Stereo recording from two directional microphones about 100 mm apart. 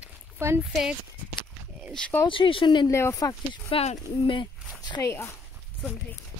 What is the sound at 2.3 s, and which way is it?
Speech, 60° left (ahead or behind).